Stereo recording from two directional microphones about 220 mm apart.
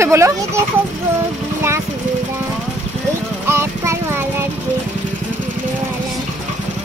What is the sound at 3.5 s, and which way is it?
Clip-clop, 10° right (ahead or behind).